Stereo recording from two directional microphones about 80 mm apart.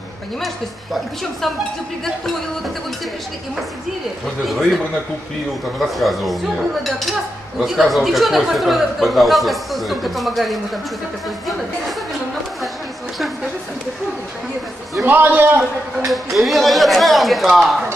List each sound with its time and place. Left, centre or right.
4.5 s speech: centre
5.8 s speech: centre
15.0 s a man's voice: right
16.1 s speech: centre